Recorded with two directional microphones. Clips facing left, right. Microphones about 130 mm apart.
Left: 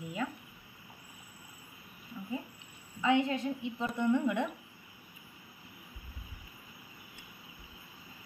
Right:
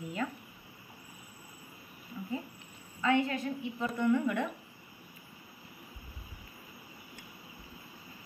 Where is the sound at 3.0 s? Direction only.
15° left (ahead or behind).